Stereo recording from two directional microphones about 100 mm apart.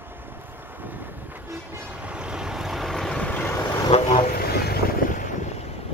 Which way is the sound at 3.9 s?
90° left.